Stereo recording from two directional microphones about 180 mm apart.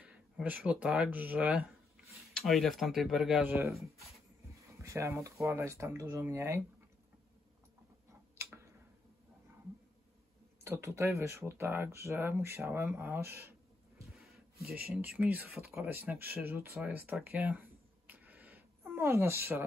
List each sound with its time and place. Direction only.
0.0 s speech: 10° right (ahead or behind)
4.8 s speech: 15° right (ahead or behind)
10.6 s speech: 15° right (ahead or behind)
14.1 s a sound: centre (ahead or behind)
15.0 s speech: 10° right (ahead or behind)